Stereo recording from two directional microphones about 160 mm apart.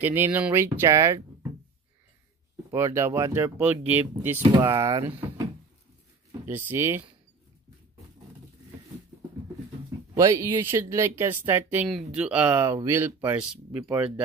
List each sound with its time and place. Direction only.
0.0 s speech: 10° right (ahead or behind)
2.7 s speech: 15° right (ahead or behind)
10.1 s speech: 20° right (ahead or behind)